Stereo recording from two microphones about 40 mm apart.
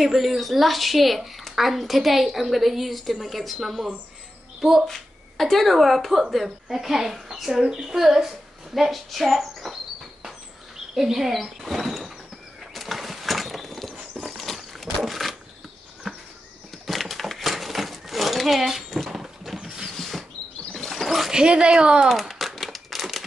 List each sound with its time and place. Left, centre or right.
0.0 s a woman's voice: centre
4.8 s a woman's voice: centre
11.0 s speech: centre
12.7 s a sound: centre
19.6 s mechanisms: centre
20.0 s rodents: centre
20.7 s a sound: centre
21.3 s speech: right
22.6 s crumpling: centre